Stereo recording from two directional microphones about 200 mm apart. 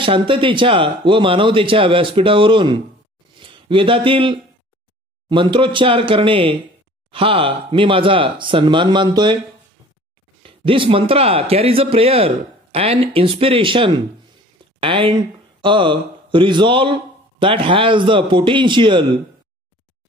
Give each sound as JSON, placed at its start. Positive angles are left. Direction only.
{"t": 0.0, "sound": "speech", "side_deg": -25}
{"t": 10.4, "sound": "speech", "side_deg": -25}